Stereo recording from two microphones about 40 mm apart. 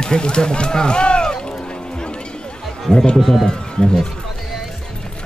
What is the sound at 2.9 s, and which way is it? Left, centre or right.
Speech, centre.